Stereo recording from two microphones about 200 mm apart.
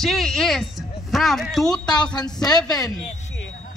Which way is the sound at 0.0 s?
Centre (ahead or behind).